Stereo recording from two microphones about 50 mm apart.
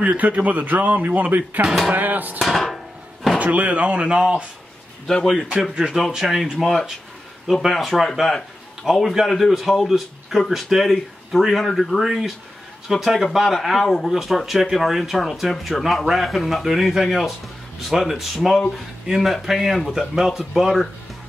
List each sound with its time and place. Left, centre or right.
0.0 s speech: right
1.9 s music: right
2.4 s chopping: centre
3.3 s speech: right
5.2 s a man's voice: centre
7.6 s speech: centre
8.9 s a man's voice: centre
9.3 s speech: centre